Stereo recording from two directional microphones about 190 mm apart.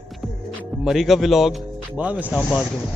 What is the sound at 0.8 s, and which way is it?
Speech, centre (ahead or behind).